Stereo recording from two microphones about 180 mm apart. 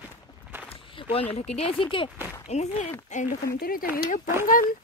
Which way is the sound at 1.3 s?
35° left (ahead or behind).